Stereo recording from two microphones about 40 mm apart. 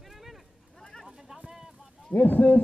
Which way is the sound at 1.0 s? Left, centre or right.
Centre.